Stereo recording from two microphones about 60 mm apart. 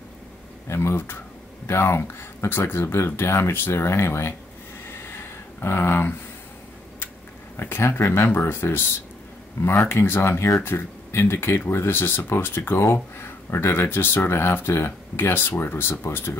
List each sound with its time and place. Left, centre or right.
0.7 s speech: left
4.9 s a sound: left
7.5 s speech: left